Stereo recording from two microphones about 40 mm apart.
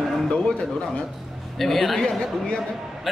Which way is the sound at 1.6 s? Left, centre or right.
Centre.